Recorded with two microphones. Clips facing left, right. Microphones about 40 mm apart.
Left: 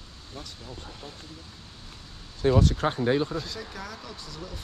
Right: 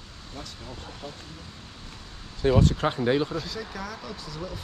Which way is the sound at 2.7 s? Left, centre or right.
Right.